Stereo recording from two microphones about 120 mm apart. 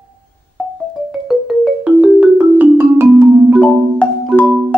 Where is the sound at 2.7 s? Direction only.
20° right (ahead or behind).